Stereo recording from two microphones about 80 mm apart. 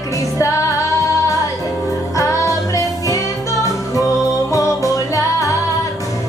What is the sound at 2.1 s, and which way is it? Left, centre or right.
Music, left.